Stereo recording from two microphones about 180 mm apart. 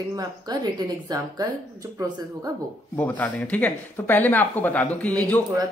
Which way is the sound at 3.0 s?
10° left (ahead or behind).